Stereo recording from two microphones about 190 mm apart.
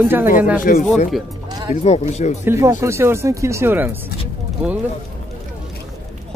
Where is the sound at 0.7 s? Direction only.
45° left (ahead or behind).